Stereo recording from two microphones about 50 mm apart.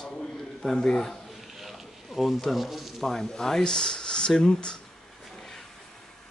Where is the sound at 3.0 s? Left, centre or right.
Centre.